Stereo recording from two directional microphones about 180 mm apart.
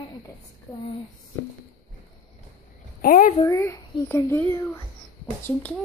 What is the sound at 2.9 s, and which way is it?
Speech, 50° left (ahead or behind).